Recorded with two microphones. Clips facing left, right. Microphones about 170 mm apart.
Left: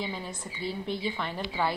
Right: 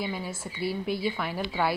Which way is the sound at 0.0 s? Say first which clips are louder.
Right 3 dB; 10° right (ahead or behind).